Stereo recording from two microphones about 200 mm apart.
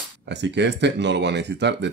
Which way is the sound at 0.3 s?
60° right (ahead or behind).